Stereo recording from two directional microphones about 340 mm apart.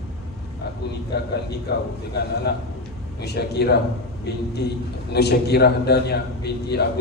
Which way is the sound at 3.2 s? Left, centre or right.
Left.